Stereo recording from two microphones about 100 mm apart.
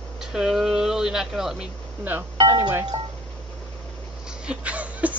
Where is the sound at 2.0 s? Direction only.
15° right (ahead or behind).